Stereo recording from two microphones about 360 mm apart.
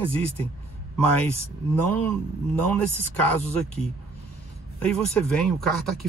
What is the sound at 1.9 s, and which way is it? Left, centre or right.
Speech, centre.